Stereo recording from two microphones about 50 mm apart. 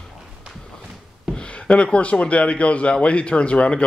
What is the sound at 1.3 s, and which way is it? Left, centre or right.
Speech, left.